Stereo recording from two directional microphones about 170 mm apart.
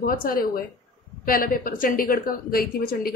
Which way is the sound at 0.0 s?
60° left (ahead or behind).